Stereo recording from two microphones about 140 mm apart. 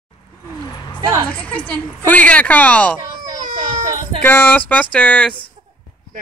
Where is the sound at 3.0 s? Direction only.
25° right (ahead or behind).